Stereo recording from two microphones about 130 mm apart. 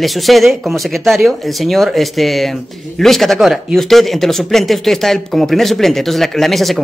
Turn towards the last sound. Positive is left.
turn(degrees=0)  # may be behind; listen again after turning